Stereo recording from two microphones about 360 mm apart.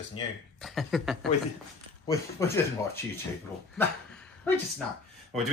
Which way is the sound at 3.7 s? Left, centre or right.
Centre.